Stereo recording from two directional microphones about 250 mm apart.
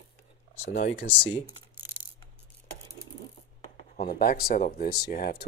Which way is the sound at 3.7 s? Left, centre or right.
Left.